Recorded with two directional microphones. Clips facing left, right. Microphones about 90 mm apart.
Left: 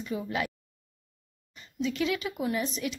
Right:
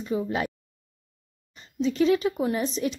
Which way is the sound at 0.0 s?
30° right (ahead or behind).